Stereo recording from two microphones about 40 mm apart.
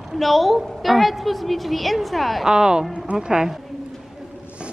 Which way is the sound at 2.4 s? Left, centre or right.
Centre.